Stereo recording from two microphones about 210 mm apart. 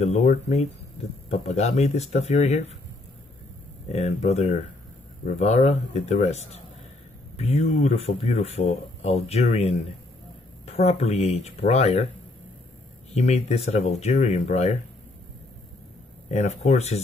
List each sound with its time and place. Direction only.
0.0 s speech: 30° left (ahead or behind)
3.9 s speech: 30° left (ahead or behind)
13.1 s speech: 30° left (ahead or behind)
16.3 s speech: 30° left (ahead or behind)